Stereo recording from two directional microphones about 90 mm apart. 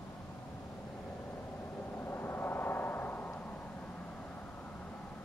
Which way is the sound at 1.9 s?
25° left (ahead or behind).